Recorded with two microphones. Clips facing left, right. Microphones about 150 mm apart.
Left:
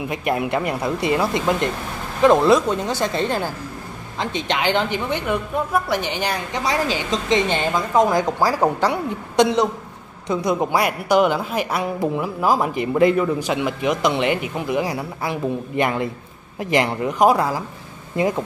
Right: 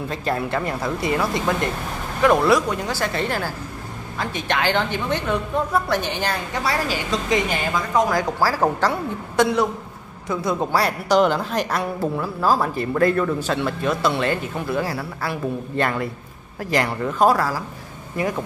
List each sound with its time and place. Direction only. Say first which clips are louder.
0.1 s a woman's voice: left 2 dB; 15° left (ahead or behind)